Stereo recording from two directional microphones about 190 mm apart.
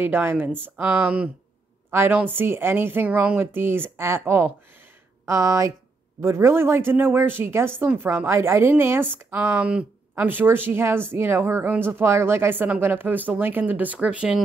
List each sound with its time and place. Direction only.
0.0 s a woman's voice: 10° right (ahead or behind)